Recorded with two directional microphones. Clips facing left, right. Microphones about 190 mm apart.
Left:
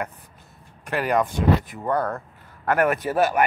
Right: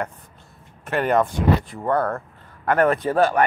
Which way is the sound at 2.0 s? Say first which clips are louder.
Right 2 dB; 15° left (ahead or behind).